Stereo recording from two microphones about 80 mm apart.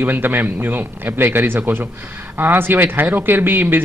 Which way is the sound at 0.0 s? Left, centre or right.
Right.